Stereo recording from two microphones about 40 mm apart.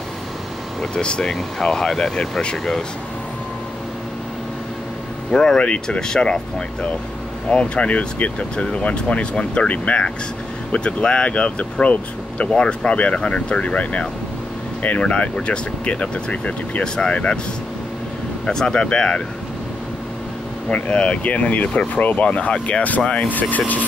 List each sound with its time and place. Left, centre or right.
0.7 s speech: left
5.3 s speech: centre; by 16.8 s left
16.8 s speech: left
18.4 s speech: centre
20.6 s speech: left